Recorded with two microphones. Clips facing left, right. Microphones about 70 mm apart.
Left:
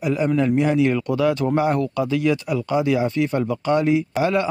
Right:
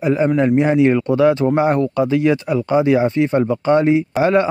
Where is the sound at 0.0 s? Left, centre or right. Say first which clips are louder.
Right 4 dB; right.